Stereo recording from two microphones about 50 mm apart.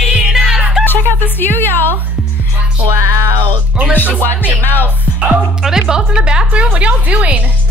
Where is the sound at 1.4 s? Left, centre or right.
Left.